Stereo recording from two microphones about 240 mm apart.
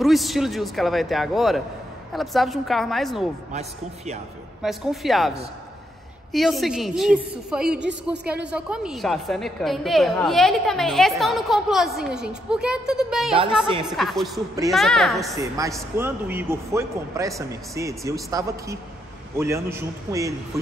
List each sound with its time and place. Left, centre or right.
0.0 s a woman's voice: centre
3.5 s a man's voice: right
4.6 s a woman's voice: centre
6.3 s a woman's voice: centre
15.3 s speech: centre